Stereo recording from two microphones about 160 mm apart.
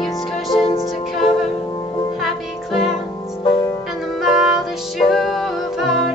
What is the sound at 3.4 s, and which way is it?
Music, 25° left (ahead or behind).